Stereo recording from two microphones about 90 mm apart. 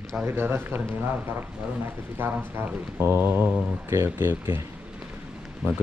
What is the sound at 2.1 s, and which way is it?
Speech, 25° right (ahead or behind).